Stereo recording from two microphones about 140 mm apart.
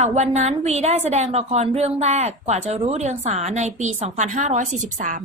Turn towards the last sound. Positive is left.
turn(degrees=-65)  # may be behind; listen again after turning